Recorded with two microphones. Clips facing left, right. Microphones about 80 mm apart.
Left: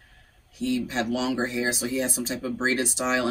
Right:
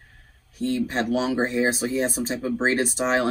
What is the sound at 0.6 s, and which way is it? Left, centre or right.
Speech, right.